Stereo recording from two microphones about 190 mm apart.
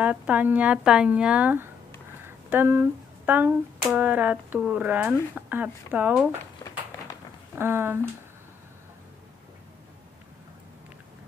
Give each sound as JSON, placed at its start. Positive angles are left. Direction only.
{"t": 0.0, "sound": "speech", "side_deg": -10}
{"t": 6.6, "sound": "a sound", "side_deg": 20}
{"t": 7.5, "sound": "speech", "side_deg": -10}